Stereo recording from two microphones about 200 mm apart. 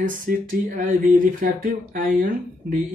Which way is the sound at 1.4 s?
45° right (ahead or behind).